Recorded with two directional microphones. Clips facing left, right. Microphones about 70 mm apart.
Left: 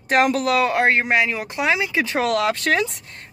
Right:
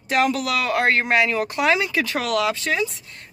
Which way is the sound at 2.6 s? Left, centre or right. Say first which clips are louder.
Left 3 dB; left.